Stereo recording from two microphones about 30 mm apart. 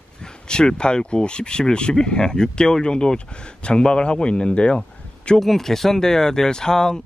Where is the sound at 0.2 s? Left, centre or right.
Left.